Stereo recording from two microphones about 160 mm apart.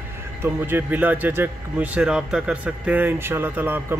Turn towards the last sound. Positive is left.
turn(degrees=-15)  # may be behind; listen again after turning